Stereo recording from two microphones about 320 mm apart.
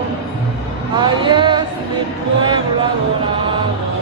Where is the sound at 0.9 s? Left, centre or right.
Centre.